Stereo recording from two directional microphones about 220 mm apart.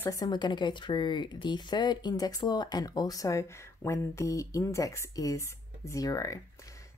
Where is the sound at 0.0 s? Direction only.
15° left (ahead or behind).